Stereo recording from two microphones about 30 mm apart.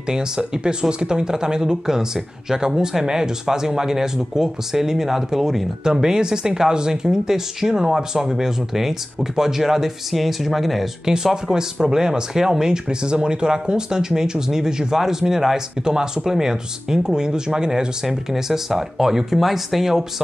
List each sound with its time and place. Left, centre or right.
0.4 s speech: right; by 10.9 s centre
11.5 s speech: right